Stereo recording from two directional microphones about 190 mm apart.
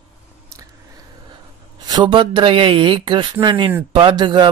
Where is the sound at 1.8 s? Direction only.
20° right (ahead or behind).